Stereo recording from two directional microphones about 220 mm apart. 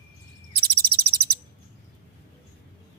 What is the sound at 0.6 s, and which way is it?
Bird vocalization, 45° right (ahead or behind).